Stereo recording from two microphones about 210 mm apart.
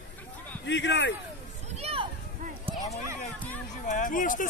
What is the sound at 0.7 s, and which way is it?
Speech, 60° left (ahead or behind).